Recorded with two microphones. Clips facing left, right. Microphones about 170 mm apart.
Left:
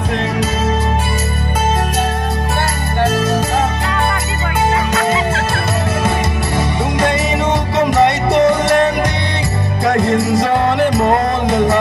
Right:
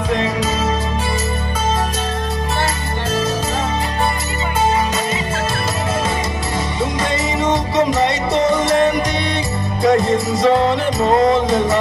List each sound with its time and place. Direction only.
7.7 s music: 60° left (ahead or behind)
9.8 s music: 60° left (ahead or behind)